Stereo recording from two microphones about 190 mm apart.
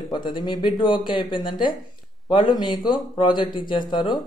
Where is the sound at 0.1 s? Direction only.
25° left (ahead or behind).